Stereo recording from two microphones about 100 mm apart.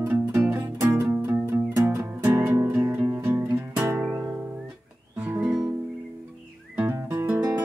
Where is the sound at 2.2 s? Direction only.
20° right (ahead or behind).